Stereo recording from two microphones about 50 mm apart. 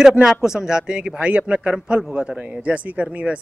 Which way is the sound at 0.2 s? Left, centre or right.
Centre.